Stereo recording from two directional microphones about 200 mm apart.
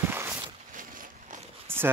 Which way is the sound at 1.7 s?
10° right (ahead or behind).